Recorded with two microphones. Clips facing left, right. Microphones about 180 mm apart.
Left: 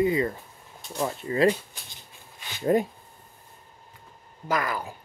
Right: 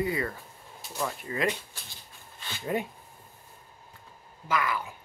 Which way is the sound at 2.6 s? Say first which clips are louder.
Left 8 dB; 40° left (ahead or behind).